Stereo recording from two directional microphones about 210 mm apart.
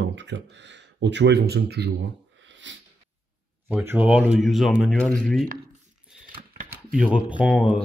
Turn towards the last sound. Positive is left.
turn(degrees=-5)  # may be behind; listen again after turning